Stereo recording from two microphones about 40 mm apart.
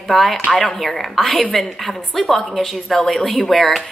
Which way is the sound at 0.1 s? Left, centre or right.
Centre.